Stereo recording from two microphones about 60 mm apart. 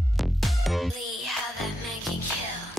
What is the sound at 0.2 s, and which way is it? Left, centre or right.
Music, centre.